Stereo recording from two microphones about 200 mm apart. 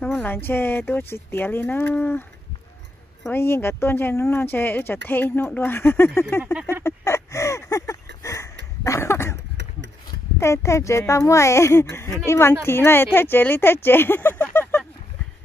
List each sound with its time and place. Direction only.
0.0 s speech: 5° left (ahead or behind)
3.3 s speech: 10° left (ahead or behind)
6.6 s a sound: 15° left (ahead or behind)
8.2 s dog: 15° left (ahead or behind)
8.8 s cough: 15° left (ahead or behind)
9.6 s a sound: 65° right (ahead or behind)
10.4 s speech: 15° left (ahead or behind)